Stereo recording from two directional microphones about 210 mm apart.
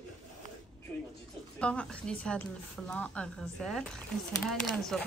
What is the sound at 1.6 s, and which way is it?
A woman's voice, 5° left (ahead or behind).